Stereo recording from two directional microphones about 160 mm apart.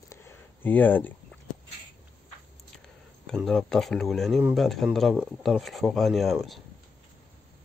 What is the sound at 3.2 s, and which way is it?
Speech, 5° left (ahead or behind).